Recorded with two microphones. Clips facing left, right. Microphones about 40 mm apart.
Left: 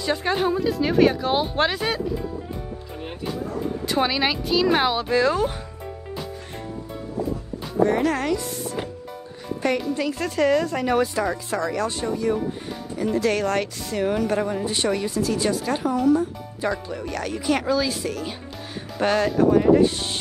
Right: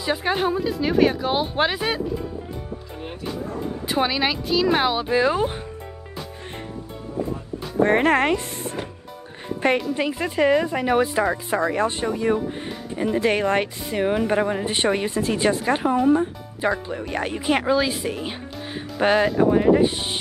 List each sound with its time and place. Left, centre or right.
0.0 s speech: centre
3.0 s speech: centre
5.1 s speech: centre
7.8 s speech: right
9.9 s speech: right